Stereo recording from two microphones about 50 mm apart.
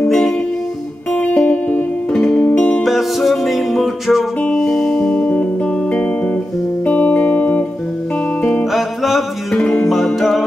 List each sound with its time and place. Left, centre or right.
1.1 s music: left
2.4 s music: left
2.8 s music: centre
4.6 s music: centre
5.2 s music: left
6.9 s music: left
8.7 s music: centre
9.6 s music: left
9.8 s music: centre